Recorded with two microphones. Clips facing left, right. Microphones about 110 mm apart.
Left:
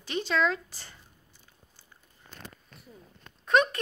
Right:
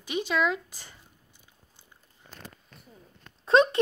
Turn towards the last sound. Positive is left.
turn(degrees=-30)  # may be behind; listen again after turning